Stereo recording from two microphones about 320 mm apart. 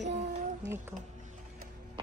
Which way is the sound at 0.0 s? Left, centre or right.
Right.